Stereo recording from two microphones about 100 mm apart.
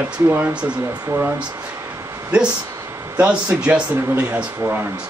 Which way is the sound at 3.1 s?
15° right (ahead or behind).